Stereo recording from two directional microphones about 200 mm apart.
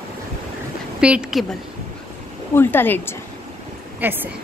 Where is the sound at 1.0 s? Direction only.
5° right (ahead or behind).